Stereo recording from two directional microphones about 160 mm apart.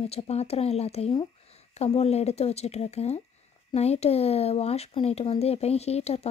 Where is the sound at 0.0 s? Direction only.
40° left (ahead or behind).